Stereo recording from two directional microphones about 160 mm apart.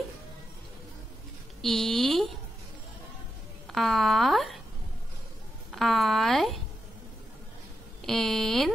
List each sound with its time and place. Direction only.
1.6 s a woman's voice: centre (ahead or behind)
3.7 s a woman's voice: centre (ahead or behind)
5.7 s a woman's voice: centre (ahead or behind)
8.0 s a woman's voice: centre (ahead or behind)